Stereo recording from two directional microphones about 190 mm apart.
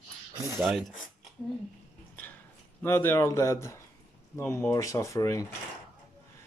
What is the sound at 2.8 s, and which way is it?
Speech, 10° left (ahead or behind).